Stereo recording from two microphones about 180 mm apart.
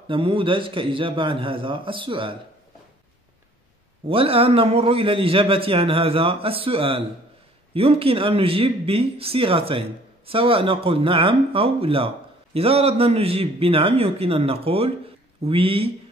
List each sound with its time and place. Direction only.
0.1 s a man's voice: 30° right (ahead or behind)
4.1 s a man's voice: 30° right (ahead or behind)